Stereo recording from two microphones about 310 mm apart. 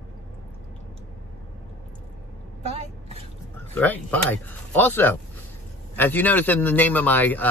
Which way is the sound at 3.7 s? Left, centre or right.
Centre.